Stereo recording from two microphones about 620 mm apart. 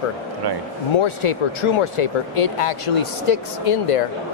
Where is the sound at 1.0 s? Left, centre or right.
Left.